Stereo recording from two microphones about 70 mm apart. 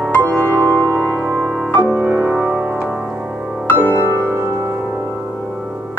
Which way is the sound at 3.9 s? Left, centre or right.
Right.